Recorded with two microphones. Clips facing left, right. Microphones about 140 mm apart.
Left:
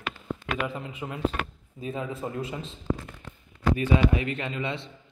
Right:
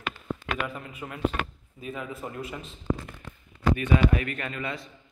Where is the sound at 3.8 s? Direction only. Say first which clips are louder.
Left 1 dB; 25° left (ahead or behind).